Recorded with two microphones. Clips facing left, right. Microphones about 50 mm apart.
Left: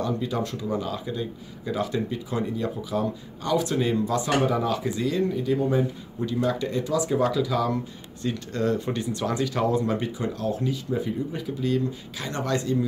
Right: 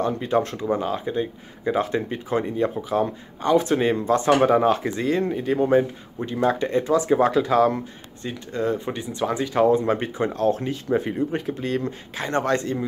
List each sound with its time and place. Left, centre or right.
0.0 s speech: right
8.3 s speech: centre; by 12.8 s right